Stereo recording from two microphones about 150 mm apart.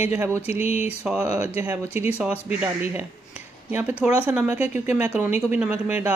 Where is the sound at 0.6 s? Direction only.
45° left (ahead or behind).